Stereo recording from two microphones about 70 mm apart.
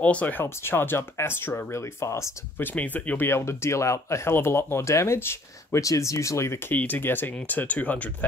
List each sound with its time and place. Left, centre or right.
0.0 s speech: left
0.4 s speech: left
2.6 s speech: left
3.3 s speech: left
5.8 s speech: left
6.7 s speech: left